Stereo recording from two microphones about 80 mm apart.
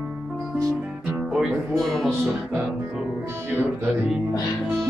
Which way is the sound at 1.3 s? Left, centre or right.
Centre.